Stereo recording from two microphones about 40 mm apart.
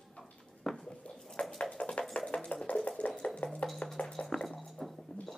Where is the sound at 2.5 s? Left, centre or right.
Left.